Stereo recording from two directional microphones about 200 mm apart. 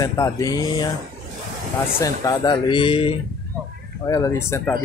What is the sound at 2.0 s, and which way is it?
Speech, 15° left (ahead or behind).